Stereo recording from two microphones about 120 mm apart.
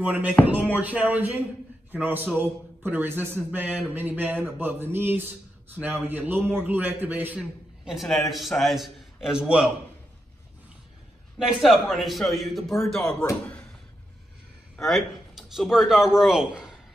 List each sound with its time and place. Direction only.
0.0 s a man's voice: 15° right (ahead or behind)
11.3 s a man's voice: centre (ahead or behind)
14.8 s speech: centre (ahead or behind)